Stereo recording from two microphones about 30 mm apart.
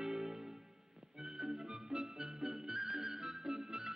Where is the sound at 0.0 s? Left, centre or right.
Centre.